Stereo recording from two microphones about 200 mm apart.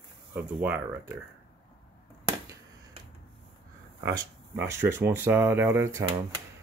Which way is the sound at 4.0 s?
15° right (ahead or behind).